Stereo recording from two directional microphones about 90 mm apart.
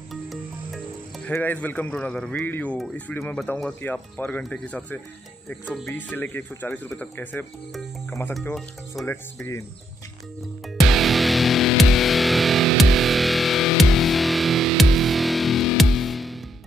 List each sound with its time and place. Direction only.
1.3 s a man's voice: 20° left (ahead or behind)
10.9 s music: centre (ahead or behind)